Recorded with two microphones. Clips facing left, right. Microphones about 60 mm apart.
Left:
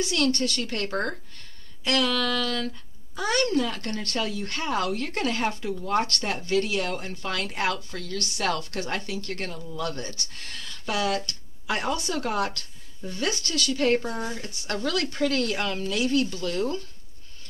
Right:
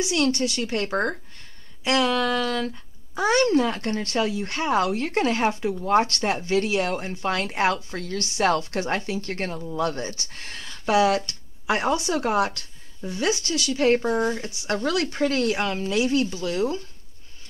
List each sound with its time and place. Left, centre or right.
0.0 s speech: centre